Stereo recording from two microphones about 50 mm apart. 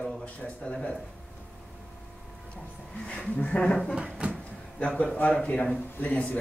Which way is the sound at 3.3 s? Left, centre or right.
Left.